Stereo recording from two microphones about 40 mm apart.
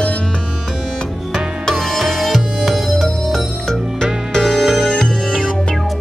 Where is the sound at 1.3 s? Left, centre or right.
Centre.